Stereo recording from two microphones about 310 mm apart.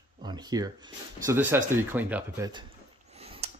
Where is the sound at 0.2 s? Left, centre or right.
Centre.